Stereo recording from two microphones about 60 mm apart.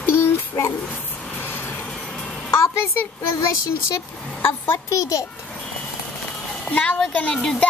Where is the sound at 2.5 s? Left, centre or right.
Left.